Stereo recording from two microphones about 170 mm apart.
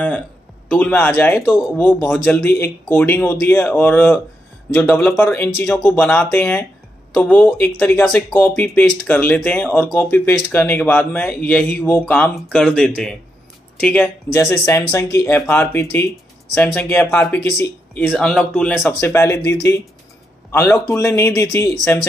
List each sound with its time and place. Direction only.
0.7 s speech: 10° left (ahead or behind)
17.9 s speech: 5° left (ahead or behind)
18.9 s speech: 15° left (ahead or behind)
20.5 s speech: 15° left (ahead or behind)